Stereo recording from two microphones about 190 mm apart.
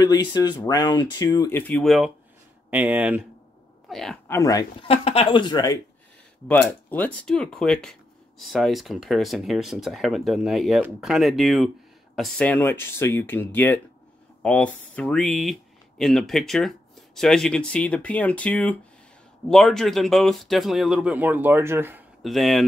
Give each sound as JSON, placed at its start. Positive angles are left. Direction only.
{"t": 0.0, "sound": "speech", "side_deg": 20}
{"t": 1.7, "sound": "speech", "side_deg": 0}
{"t": 4.3, "sound": "speech", "side_deg": 20}
{"t": 4.8, "sound": "speech", "side_deg": 30}
{"t": 6.4, "sound": "speech", "side_deg": 5}
{"t": 22.2, "sound": "speech", "side_deg": 0}